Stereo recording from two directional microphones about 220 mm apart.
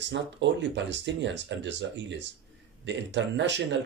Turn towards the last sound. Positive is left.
turn(degrees=-55)  # may be behind; listen again after turning